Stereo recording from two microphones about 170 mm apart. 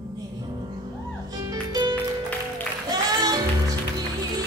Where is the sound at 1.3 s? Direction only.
25° right (ahead or behind).